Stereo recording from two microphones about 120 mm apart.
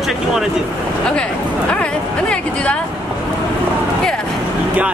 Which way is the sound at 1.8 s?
10° left (ahead or behind).